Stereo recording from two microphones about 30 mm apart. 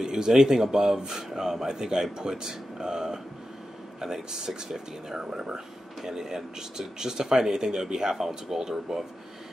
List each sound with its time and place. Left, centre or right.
0.0 s speech: right
4.6 s speech: right